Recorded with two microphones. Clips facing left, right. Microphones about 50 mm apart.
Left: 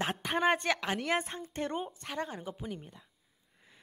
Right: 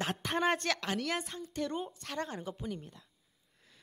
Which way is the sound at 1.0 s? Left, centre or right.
Left.